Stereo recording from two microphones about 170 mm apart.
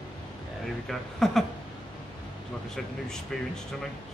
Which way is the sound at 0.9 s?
Centre (ahead or behind).